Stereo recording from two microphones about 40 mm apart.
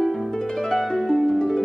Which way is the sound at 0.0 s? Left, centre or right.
Centre.